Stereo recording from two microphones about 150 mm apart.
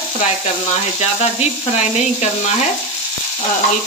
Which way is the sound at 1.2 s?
45° left (ahead or behind).